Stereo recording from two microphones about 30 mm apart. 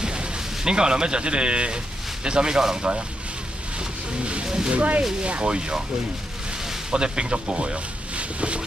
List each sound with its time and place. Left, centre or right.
0.0 s speech: right
3.7 s vehicle: right
4.5 s a sound: right
4.7 s speech: right
5.2 s speech: right
6.9 s speech: right